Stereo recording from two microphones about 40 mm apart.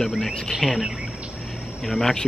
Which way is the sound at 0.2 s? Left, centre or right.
Centre.